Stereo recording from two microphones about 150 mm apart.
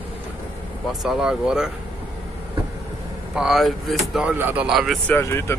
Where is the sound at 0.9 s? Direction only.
Centre (ahead or behind).